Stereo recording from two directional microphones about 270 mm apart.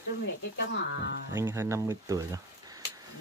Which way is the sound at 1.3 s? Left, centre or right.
Centre.